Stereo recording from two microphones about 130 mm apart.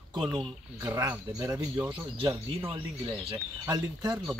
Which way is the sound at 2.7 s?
40° right (ahead or behind).